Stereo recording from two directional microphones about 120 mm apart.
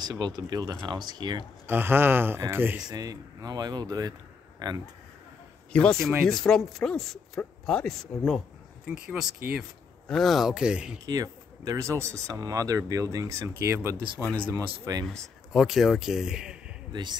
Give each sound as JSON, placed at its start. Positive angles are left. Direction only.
{"t": 0.0, "sound": "speech", "side_deg": -35}
{"t": 1.7, "sound": "speech", "side_deg": -20}
{"t": 2.9, "sound": "speech", "side_deg": -30}
{"t": 5.7, "sound": "speech", "side_deg": 10}
{"t": 8.8, "sound": "speech", "side_deg": -10}
{"t": 11.1, "sound": "speech", "side_deg": -30}
{"t": 15.0, "sound": "speech", "side_deg": 0}